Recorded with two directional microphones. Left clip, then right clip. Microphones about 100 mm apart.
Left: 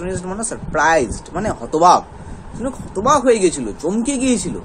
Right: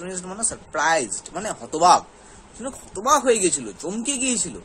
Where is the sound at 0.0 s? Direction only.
15° right (ahead or behind).